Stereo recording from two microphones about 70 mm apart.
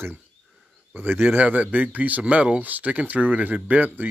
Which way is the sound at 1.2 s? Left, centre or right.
Right.